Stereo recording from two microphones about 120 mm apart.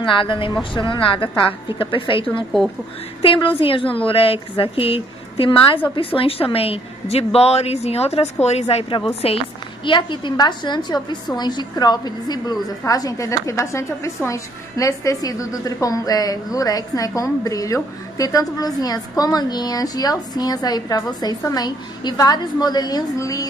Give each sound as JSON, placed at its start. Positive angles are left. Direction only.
{"t": 0.0, "sound": "a woman's voice", "side_deg": 45}
{"t": 9.8, "sound": "a woman's voice", "side_deg": 40}